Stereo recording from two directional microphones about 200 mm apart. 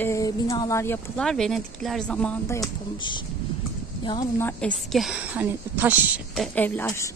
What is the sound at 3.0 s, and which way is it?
Speech, 25° left (ahead or behind).